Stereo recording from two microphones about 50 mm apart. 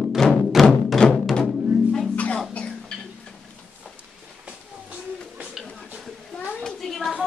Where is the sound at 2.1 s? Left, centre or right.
Left.